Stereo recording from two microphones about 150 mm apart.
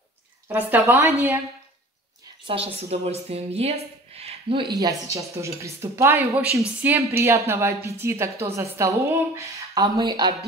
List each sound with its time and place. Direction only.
0.5 s speech: 15° right (ahead or behind)
2.4 s speech: 40° right (ahead or behind)
4.7 s a woman's voice: 20° right (ahead or behind)